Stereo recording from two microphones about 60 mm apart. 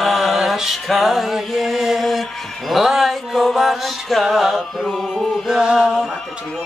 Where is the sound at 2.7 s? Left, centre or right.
Centre.